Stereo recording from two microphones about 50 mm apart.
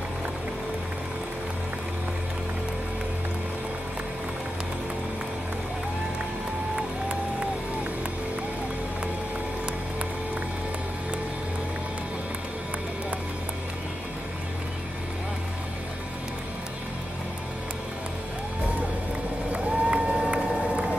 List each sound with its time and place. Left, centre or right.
19.5 s run: right